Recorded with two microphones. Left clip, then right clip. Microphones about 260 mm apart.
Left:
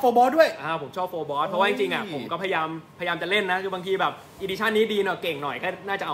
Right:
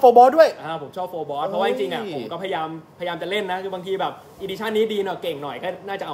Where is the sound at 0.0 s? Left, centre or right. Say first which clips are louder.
Right 7 dB; centre.